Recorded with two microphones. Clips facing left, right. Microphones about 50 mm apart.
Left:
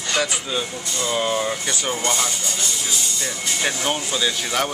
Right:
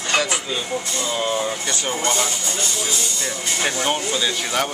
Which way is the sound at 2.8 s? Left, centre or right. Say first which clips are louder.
Right 1 dB; centre.